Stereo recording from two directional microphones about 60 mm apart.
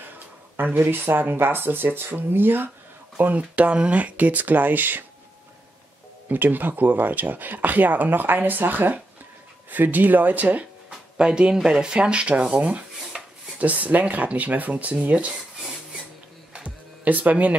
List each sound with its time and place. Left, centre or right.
0.6 s speech: right
6.2 s speech: right
10.9 s speech: centre
13.0 s a sound: centre
13.6 s speech: right
16.6 s music: right